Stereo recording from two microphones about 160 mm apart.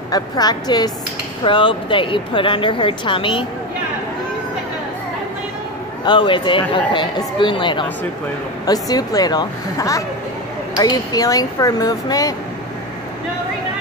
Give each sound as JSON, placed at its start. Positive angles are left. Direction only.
{"t": 0.1, "sound": "speech", "side_deg": 25}
{"t": 6.0, "sound": "speech", "side_deg": 30}